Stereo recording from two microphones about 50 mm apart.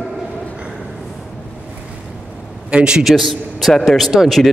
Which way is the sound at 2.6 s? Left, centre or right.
Centre.